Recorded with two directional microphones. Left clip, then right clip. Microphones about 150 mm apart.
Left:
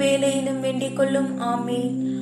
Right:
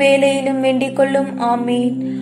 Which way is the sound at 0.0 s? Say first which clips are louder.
Right 8 dB; 20° right (ahead or behind).